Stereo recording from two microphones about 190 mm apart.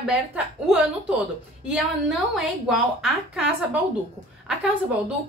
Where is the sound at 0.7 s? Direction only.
5° right (ahead or behind).